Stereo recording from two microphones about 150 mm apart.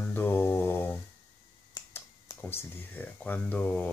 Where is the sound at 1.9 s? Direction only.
15° left (ahead or behind).